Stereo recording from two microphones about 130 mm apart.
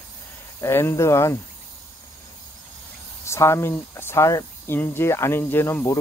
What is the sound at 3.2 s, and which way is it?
Speech, 20° left (ahead or behind).